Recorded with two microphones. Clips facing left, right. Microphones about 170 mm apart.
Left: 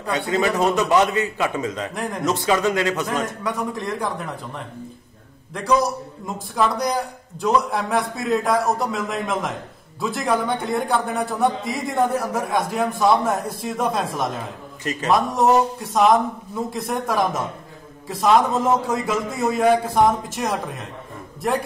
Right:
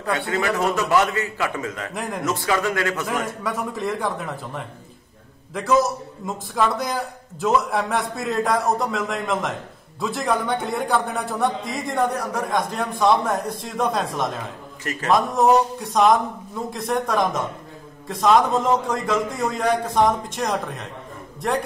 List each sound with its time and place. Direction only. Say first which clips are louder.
0.3 s a man's voice: left 4 dB; 20° left (ahead or behind)
2.0 s a man's voice: left 1 dB; centre (ahead or behind)
2.2 s a man's voice: left 3 dB; 20° left (ahead or behind)
3.1 s a man's voice: left 1 dB; centre (ahead or behind)